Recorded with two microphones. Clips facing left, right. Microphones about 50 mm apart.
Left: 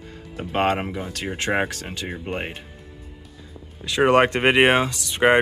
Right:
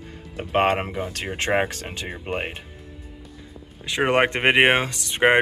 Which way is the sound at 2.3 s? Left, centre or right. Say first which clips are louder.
Right 4 dB; centre.